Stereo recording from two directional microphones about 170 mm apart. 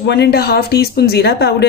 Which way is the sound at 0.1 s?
75° left (ahead or behind).